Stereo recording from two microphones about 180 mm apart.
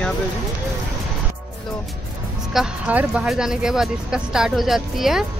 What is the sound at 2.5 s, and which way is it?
Speech, 5° right (ahead or behind).